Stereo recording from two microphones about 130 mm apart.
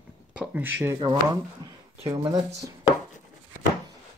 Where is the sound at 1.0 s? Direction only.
30° right (ahead or behind).